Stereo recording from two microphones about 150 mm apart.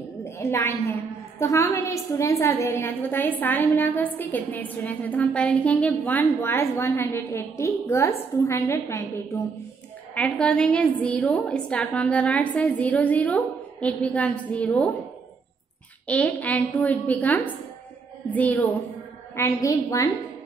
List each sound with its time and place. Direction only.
0.2 s a sound: 15° left (ahead or behind)
1.4 s a woman's voice: 20° left (ahead or behind)
10.1 s a woman's voice: 5° left (ahead or behind)
16.1 s a woman's voice: 10° left (ahead or behind)